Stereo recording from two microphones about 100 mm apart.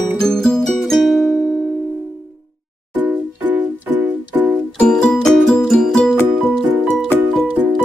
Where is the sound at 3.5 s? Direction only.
15° right (ahead or behind).